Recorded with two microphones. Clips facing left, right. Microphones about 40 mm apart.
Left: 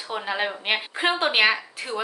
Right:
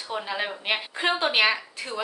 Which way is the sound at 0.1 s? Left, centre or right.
Centre.